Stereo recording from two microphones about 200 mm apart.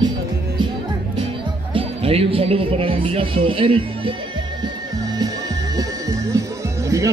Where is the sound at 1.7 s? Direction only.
30° right (ahead or behind).